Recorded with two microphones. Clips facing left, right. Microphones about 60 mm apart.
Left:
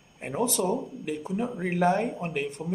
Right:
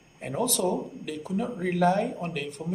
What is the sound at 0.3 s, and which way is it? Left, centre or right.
Speech, left.